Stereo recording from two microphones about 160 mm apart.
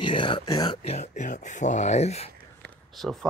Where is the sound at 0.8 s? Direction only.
45° left (ahead or behind).